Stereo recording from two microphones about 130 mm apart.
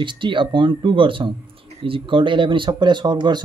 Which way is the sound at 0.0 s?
40° right (ahead or behind).